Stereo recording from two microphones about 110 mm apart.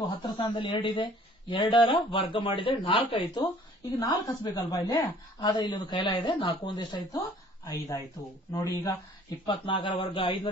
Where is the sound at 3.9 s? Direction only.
40° left (ahead or behind).